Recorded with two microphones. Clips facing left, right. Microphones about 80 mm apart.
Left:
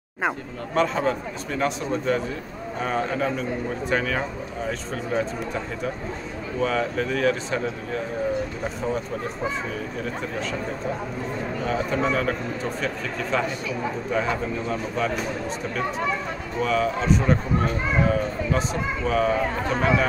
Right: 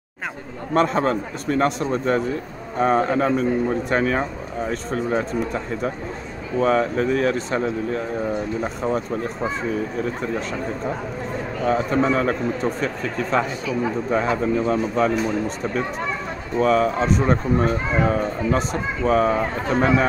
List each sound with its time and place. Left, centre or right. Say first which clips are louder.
0.7 s speech: right 3 dB; right
6.6 s speech: right 5 dB; right
11.6 s speech: right 5 dB; right
16.5 s speech: right 5 dB; right